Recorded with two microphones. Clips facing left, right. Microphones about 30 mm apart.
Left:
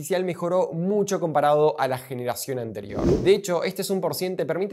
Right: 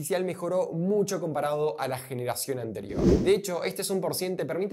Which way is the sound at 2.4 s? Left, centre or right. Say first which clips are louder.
Left 3 dB; centre.